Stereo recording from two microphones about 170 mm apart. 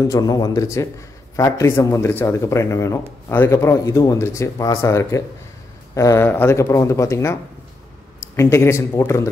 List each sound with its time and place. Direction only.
0.0 s a man's voice: 20° left (ahead or behind)
8.4 s a man's voice: 15° left (ahead or behind)